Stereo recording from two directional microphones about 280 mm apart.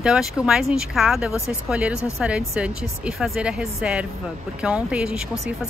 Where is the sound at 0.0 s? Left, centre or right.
Centre.